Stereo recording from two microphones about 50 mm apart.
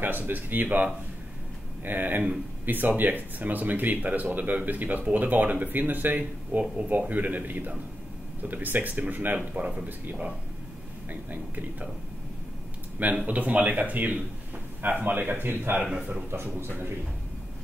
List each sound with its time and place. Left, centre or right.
0.0 s speech: right
1.9 s speech: right
11.1 s speech: right
13.1 s speech: right